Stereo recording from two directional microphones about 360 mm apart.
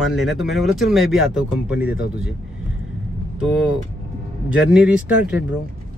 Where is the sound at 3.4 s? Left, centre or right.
Centre.